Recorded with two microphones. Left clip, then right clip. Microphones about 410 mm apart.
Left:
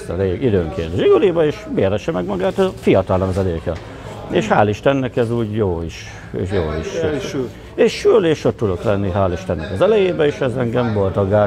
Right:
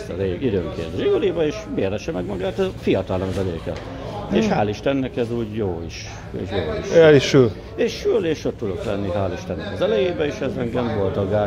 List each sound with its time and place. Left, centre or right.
0.2 s speech: left
4.3 s speech: left
7.0 s a man's voice: right
7.7 s a man's voice: left